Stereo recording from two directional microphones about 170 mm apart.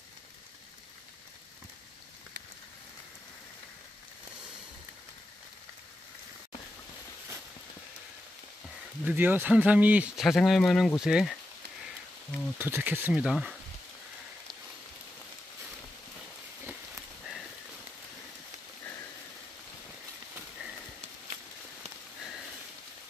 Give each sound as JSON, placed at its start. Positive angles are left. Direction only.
{"t": 9.0, "sound": "speech", "side_deg": -10}
{"t": 12.5, "sound": "speech", "side_deg": -10}